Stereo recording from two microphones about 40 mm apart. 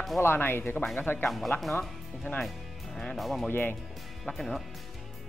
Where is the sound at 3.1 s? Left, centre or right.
Centre.